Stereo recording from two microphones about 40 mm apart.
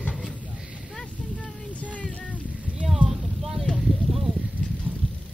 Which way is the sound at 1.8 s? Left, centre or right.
Left.